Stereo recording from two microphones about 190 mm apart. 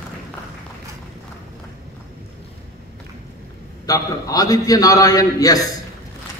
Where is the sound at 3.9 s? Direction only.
20° left (ahead or behind).